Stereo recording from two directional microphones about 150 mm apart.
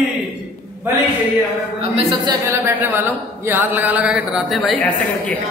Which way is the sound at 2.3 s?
20° right (ahead or behind).